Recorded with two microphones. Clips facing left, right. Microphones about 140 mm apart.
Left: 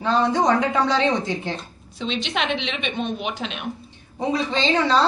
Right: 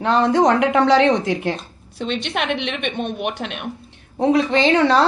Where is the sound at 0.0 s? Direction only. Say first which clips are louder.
Right 4 dB; 75° right (ahead or behind).